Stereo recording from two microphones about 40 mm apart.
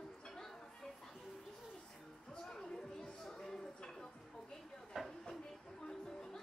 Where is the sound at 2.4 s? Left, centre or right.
Centre.